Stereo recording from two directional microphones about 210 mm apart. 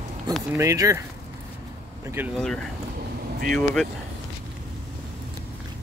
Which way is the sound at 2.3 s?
5° left (ahead or behind).